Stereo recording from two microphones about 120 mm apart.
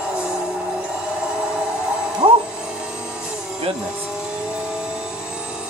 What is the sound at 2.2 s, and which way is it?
Music, 45° right (ahead or behind).